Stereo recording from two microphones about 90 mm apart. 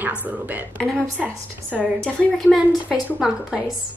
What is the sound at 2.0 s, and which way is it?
Speech, 5° left (ahead or behind).